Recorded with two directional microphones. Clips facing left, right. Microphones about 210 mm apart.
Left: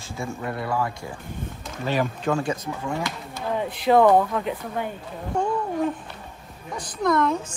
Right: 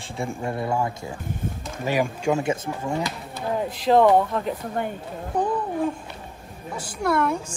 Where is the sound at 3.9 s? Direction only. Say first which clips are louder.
Even; centre (ahead or behind).